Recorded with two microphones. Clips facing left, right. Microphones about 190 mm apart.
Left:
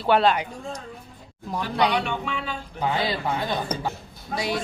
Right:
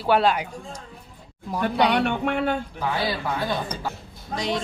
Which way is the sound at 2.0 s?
55° right (ahead or behind).